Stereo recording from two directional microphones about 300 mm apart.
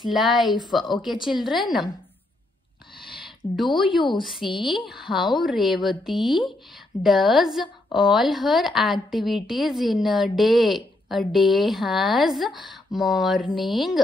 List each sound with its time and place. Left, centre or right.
0.0 s a woman's voice: centre
0.8 s a woman's voice: centre
1.2 s a woman's voice: centre
3.0 s a sound: centre
3.8 s a woman's voice: centre
4.2 s a woman's voice: centre
13.5 s a woman's voice: centre
13.7 s a woman's voice: centre